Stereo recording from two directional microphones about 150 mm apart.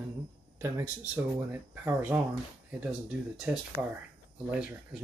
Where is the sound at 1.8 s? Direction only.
15° right (ahead or behind).